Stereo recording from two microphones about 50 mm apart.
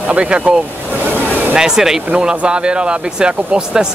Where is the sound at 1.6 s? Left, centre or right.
Centre.